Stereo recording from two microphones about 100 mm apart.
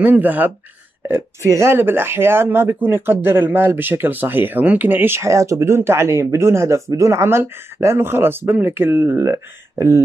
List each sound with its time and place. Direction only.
0.0 s speech: 20° right (ahead or behind)